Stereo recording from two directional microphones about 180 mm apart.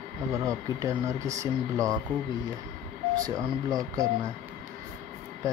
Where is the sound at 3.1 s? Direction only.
20° right (ahead or behind).